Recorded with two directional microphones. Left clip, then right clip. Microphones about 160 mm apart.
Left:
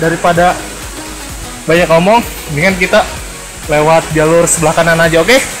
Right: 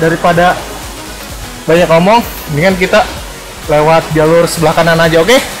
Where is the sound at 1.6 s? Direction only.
20° right (ahead or behind).